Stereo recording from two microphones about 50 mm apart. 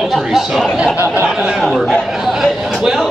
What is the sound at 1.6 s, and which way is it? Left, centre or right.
Speech, centre.